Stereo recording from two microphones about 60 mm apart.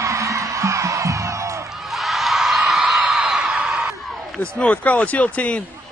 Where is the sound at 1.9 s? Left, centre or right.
Centre.